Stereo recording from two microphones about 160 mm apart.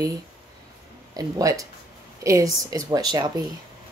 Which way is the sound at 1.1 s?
20° right (ahead or behind).